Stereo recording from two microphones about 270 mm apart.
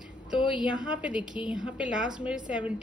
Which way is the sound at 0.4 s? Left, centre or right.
Centre.